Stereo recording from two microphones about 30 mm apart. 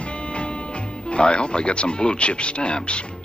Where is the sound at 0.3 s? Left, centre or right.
Left.